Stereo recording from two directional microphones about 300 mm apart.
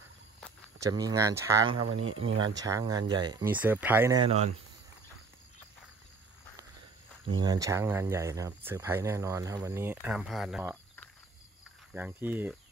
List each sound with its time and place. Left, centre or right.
0.7 s speech: centre
1.8 s speech: right
2.5 s speech: centre
7.2 s speech: centre